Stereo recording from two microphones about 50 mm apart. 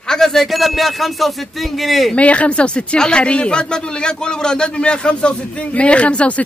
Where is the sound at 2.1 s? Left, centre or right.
Left.